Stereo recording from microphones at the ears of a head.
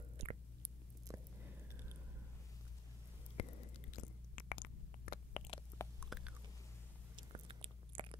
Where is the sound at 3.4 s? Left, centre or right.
Left.